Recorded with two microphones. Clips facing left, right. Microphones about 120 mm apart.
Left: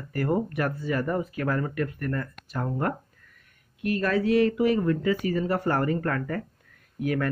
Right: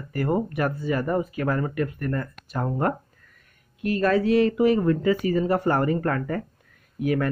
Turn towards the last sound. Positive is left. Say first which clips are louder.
# right 3 dB
turn(degrees=-15)  # may be behind; listen again after turning